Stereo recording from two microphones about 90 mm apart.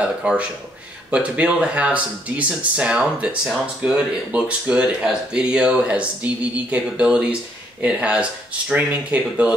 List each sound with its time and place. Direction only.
0.0 s speech: 10° right (ahead or behind)